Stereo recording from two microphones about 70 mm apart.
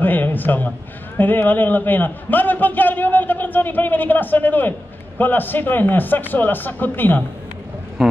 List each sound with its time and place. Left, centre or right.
0.0 s a man's voice: left
8.0 s speech: centre